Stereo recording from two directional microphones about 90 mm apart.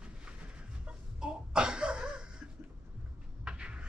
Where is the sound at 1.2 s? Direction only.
10° right (ahead or behind).